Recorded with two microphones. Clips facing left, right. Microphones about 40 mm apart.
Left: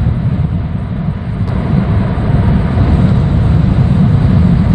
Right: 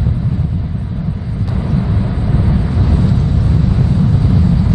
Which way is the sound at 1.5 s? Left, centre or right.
Left.